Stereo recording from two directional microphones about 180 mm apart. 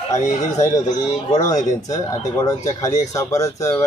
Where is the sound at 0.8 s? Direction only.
40° left (ahead or behind).